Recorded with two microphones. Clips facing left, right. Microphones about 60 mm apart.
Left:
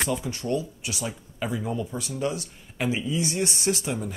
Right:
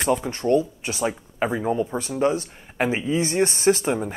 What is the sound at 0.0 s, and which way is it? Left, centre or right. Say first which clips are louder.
Speech: right 6 dB; right.